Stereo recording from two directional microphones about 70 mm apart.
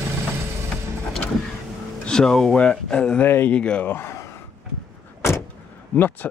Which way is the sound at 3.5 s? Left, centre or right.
Centre.